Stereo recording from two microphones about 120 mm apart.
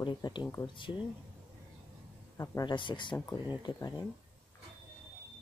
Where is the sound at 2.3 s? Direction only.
30° left (ahead or behind).